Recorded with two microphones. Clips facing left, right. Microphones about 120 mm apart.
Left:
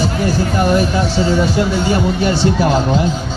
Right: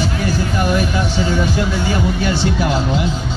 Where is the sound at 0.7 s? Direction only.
35° left (ahead or behind).